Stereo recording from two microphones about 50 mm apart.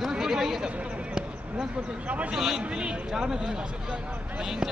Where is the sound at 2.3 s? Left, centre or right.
Centre.